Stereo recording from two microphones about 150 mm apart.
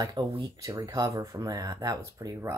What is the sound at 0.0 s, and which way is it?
Speech, 25° right (ahead or behind).